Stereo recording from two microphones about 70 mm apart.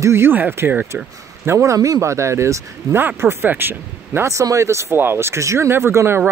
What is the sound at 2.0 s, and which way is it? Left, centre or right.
Speech, right.